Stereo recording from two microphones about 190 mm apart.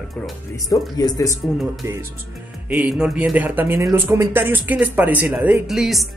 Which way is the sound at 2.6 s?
5° right (ahead or behind).